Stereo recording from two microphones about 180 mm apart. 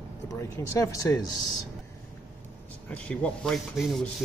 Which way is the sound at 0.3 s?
15° left (ahead or behind).